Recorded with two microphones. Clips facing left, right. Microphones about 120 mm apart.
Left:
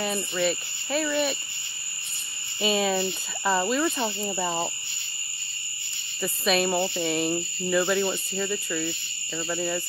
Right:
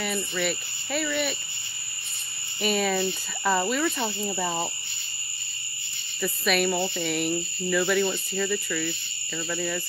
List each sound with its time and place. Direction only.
0.0 s speech: 30° left (ahead or behind)
2.6 s speech: 25° left (ahead or behind)
6.2 s speech: 25° left (ahead or behind)